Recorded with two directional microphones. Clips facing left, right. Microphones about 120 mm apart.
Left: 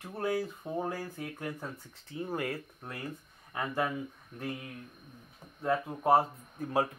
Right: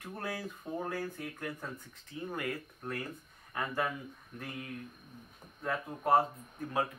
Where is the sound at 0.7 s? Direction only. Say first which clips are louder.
Left 2 dB; 25° left (ahead or behind).